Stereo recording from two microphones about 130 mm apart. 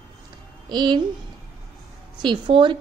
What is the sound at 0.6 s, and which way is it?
Speech, 35° right (ahead or behind).